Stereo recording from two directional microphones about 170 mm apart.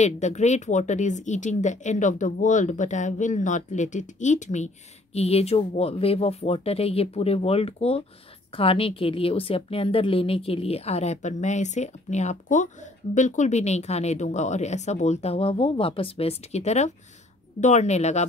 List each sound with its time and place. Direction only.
0.0 s a woman's voice: 40° left (ahead or behind)